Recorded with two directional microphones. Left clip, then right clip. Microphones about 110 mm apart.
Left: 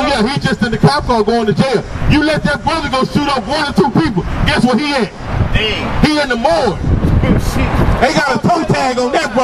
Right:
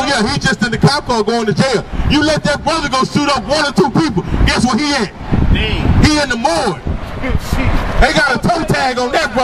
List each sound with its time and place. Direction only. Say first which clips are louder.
0.0 s a man's voice: even; 40° right (ahead or behind)
6.0 s a man's voice: left 1 dB; 40° right (ahead or behind)
8.0 s a man's voice: right 1 dB; 30° right (ahead or behind)